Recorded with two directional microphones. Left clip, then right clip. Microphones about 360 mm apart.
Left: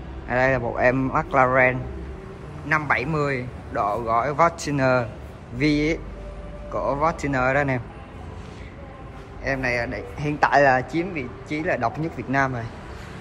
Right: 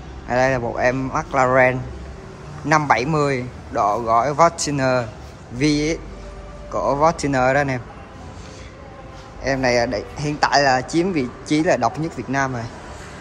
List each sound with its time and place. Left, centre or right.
0.3 s a man's voice: centre
9.4 s a man's voice: centre